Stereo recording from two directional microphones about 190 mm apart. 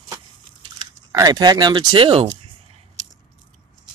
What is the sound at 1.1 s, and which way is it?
Speech, 20° right (ahead or behind).